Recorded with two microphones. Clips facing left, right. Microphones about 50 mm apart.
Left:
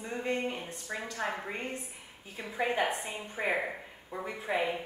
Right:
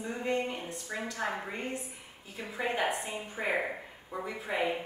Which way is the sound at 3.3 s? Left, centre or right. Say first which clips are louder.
Even; centre.